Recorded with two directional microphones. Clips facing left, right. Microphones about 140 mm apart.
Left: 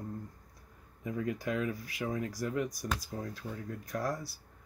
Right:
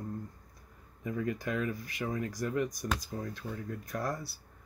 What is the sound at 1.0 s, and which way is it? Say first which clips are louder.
Speech: right 1 dB; 5° left (ahead or behind).